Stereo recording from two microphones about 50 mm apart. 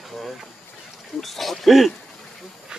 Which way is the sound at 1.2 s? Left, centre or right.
Centre.